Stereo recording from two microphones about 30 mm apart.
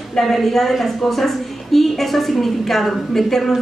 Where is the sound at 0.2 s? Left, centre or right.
Centre.